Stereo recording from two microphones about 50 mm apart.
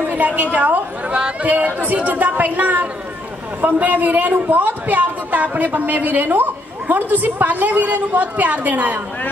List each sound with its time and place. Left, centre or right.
0.0 s a woman's voice: right